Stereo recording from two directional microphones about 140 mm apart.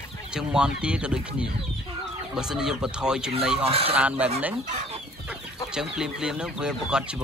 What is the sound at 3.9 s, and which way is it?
Speech, 10° right (ahead or behind).